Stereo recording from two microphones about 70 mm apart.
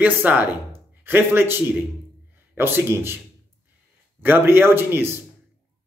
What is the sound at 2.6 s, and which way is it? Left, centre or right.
Speech, right.